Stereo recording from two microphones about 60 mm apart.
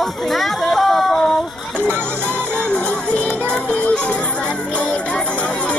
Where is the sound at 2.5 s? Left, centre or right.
Centre.